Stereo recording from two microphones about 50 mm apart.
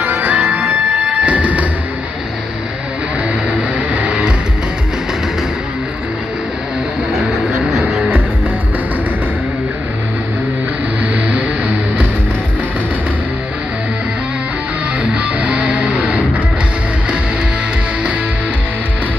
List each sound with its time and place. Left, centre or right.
0.0 s music: right
3.7 s music: right
11.2 s music: right
15.4 s music: right